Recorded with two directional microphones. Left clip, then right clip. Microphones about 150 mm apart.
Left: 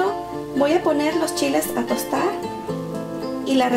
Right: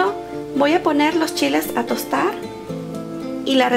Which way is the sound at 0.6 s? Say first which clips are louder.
Right 2 dB; 20° right (ahead or behind).